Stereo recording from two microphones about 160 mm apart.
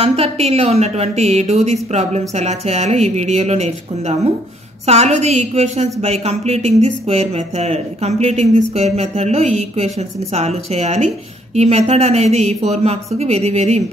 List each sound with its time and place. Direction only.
0.0 s speech: 40° right (ahead or behind)